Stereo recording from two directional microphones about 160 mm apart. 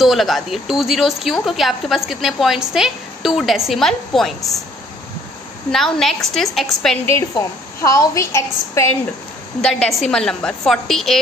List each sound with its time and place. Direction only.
0.0 s a woman's voice: centre (ahead or behind)
5.7 s a woman's voice: centre (ahead or behind)
7.1 s a woman's voice: 20° left (ahead or behind)
9.6 s a woman's voice: 5° left (ahead or behind)